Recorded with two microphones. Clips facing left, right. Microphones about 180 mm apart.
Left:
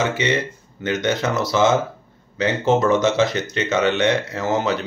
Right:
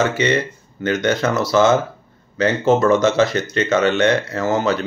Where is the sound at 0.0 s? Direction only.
20° left (ahead or behind).